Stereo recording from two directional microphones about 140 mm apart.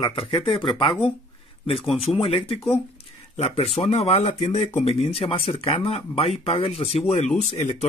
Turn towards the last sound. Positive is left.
turn(degrees=55)  # may be behind; listen again after turning